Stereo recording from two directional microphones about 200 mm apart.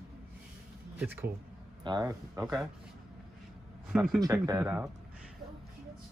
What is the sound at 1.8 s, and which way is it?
Speech, 20° right (ahead or behind).